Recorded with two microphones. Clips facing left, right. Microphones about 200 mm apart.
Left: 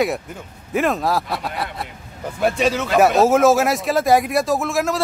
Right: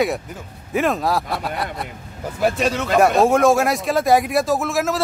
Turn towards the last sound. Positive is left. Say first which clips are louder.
# even
turn(degrees=0)  # may be behind; listen again after turning